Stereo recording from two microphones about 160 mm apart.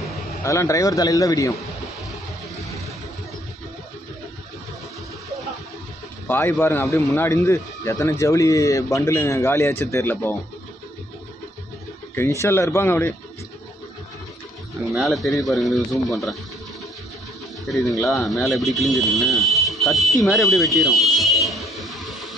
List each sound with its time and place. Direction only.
0.4 s speech: 20° left (ahead or behind)
6.2 s a man's voice: 15° left (ahead or behind)
12.2 s speech: 15° left (ahead or behind)
15.0 s speech: centre (ahead or behind)
18.0 s speech: centre (ahead or behind)